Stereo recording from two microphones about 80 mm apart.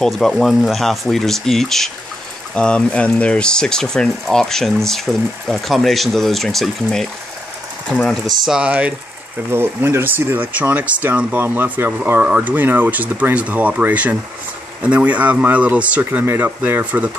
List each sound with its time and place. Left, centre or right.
0.0 s speech: centre
8.5 s speech: centre
9.5 s speech: right